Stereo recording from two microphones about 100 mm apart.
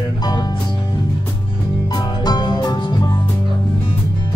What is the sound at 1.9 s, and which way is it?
Music, 45° left (ahead or behind).